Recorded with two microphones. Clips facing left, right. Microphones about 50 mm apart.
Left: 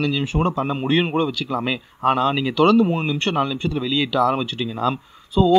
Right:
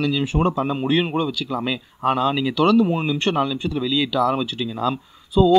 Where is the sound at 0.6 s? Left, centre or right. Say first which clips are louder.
Even; centre.